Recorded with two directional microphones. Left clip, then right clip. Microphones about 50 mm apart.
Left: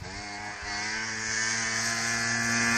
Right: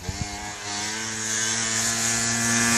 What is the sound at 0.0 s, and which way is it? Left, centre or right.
Vehicle, left.